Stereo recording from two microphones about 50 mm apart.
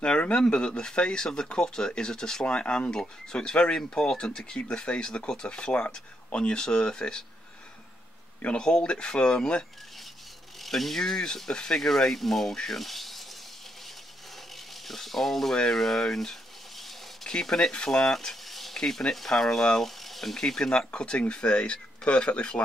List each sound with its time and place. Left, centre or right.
0.0 s speech: centre
8.5 s speech: centre
10.6 s speech: centre
14.9 s speech: centre
15.6 s a sound: centre
17.3 s speech: centre
20.0 s a sound: centre
20.3 s speech: centre